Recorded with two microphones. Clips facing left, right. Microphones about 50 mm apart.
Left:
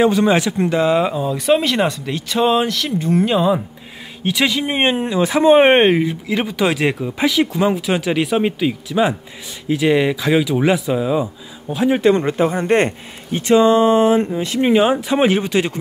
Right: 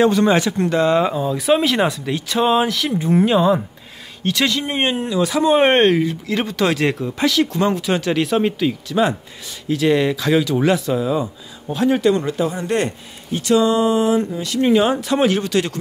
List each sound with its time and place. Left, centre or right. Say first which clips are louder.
0.0 s speech: even; centre
4.2 s speech: left 1 dB; centre
12.0 s speech: left 3 dB; left